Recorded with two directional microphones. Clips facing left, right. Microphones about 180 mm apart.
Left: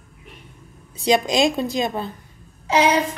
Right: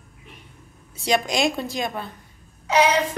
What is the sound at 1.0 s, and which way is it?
A woman's voice, 20° left (ahead or behind).